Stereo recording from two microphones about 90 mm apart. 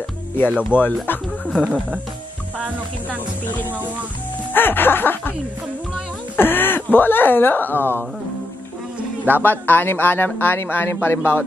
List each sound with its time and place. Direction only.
0.7 s speech: 20° left (ahead or behind)
1.0 s music: 20° left (ahead or behind)
1.5 s speech: 10° right (ahead or behind)
4.6 s speech: 25° left (ahead or behind)
6.3 s speech: 25° left (ahead or behind)
9.4 s speech: 20° left (ahead or behind)